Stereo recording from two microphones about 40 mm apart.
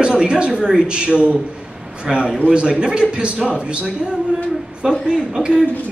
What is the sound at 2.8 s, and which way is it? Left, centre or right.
Speech, right.